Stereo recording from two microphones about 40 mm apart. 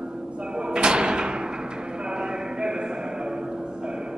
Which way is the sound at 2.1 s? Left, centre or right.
Centre.